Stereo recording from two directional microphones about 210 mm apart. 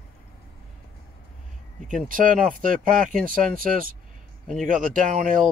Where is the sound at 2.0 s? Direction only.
40° right (ahead or behind).